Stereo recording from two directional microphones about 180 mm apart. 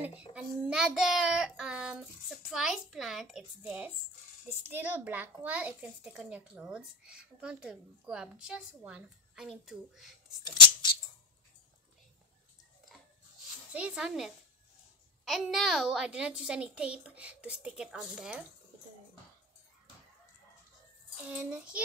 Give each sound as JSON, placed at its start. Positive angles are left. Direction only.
{"t": 0.6, "sound": "a child's voice", "side_deg": -5}
{"t": 10.4, "sound": "a sound", "side_deg": 25}
{"t": 13.7, "sound": "a child's voice", "side_deg": -5}
{"t": 21.2, "sound": "a child's voice", "side_deg": -10}